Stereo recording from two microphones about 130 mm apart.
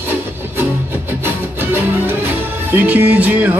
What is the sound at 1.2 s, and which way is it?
Music, 15° right (ahead or behind).